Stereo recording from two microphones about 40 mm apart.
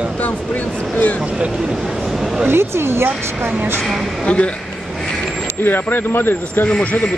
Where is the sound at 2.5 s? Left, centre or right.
Right.